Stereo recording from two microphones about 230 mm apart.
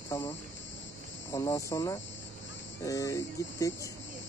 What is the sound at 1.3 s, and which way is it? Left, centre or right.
Speech, centre.